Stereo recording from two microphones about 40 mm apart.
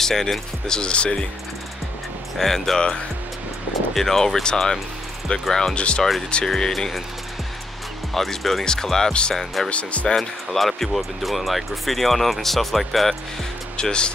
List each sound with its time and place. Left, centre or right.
0.0 s speech: centre
0.7 s speech: left
2.3 s speech: centre
3.9 s speech: centre
5.8 s speech: left
6.4 s speech: centre
8.1 s speech: centre
9.7 s speech: left
10.0 s speech: centre
13.7 s speech: left